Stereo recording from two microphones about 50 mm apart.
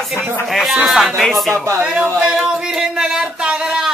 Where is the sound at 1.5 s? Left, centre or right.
Right.